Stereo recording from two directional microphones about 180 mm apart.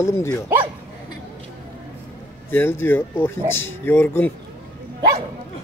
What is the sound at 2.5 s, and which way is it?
Speech, 15° left (ahead or behind).